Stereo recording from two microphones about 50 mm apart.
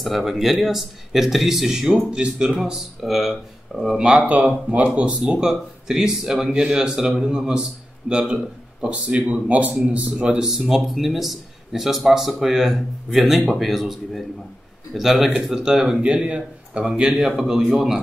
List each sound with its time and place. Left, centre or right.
0.0 s speech: centre
4.2 s speech: right
5.3 s speech: centre; by 10.2 s right
10.2 s speech: centre
16.1 s speech: right
16.8 s speech: centre